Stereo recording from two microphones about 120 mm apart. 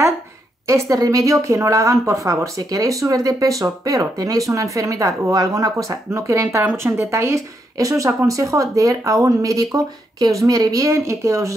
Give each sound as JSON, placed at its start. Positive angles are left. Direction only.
{"t": 0.7, "sound": "speech", "side_deg": -25}